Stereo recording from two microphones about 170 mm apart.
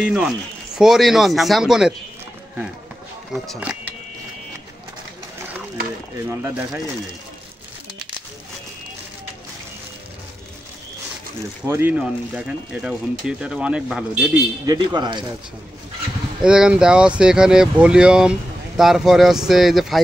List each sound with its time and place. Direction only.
0.0 s speech: 5° right (ahead or behind)
6.2 s speech: 10° right (ahead or behind)
11.6 s speech: 15° right (ahead or behind)
14.7 s speech: 25° right (ahead or behind)
16.3 s speech: 5° right (ahead or behind)